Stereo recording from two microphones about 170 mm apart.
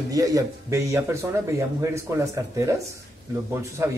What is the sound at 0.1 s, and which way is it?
Speech, 20° right (ahead or behind).